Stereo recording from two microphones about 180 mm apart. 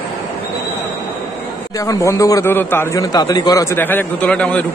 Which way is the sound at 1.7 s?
20° left (ahead or behind).